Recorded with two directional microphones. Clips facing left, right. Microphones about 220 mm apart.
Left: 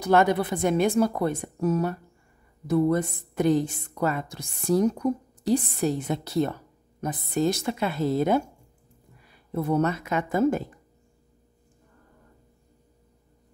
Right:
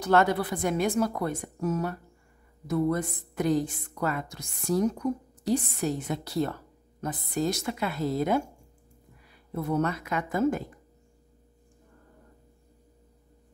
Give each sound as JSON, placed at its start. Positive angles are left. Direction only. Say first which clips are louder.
{"t": 0.0, "sound": "a woman's voice", "louder": "left 2 dB", "side_deg": 15}
{"t": 9.5, "sound": "a woman's voice", "louder": "left 4 dB", "side_deg": 30}